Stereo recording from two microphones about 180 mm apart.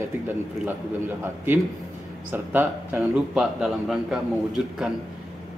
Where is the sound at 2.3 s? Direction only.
10° right (ahead or behind).